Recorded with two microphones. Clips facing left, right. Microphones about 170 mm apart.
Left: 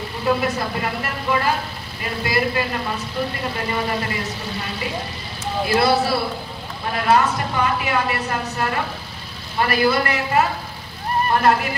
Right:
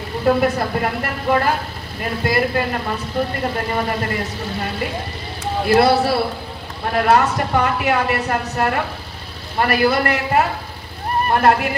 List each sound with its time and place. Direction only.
0.2 s speech: 50° right (ahead or behind)
5.4 s a sound: 60° right (ahead or behind)
6.9 s speech: 55° right (ahead or behind)